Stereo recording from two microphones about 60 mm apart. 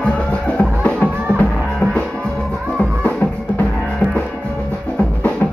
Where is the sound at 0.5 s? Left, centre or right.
Left.